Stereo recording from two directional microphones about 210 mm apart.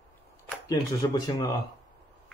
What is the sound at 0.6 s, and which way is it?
Speech, 20° left (ahead or behind).